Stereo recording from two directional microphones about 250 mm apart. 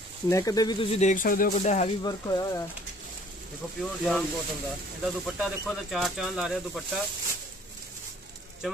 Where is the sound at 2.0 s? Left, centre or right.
Centre.